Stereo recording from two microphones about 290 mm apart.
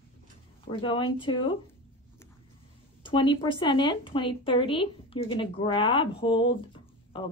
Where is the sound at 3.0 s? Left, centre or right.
Centre.